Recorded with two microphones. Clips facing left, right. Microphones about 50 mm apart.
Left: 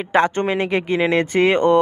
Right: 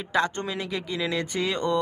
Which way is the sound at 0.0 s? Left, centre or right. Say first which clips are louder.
Left 8 dB; left.